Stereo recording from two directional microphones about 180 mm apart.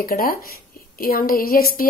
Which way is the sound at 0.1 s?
55° left (ahead or behind).